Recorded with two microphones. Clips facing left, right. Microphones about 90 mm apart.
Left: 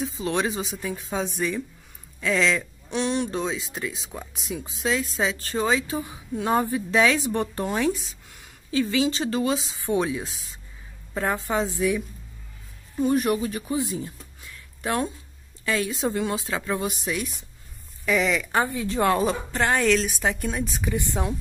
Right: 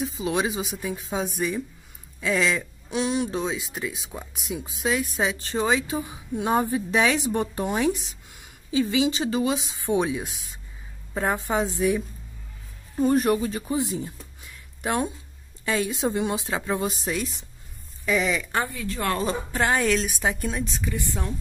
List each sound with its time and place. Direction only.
0.0 s a woman's voice: 10° right (ahead or behind)
12.9 s a woman's voice: 35° right (ahead or behind); by 16.8 s 20° right (ahead or behind)
16.8 s a woman's voice: 35° right (ahead or behind)
18.0 s a woman's voice: centre (ahead or behind)
18.6 s speech: 20° left (ahead or behind)
19.2 s a woman's voice: 5° right (ahead or behind)
20.8 s speech: 20° left (ahead or behind)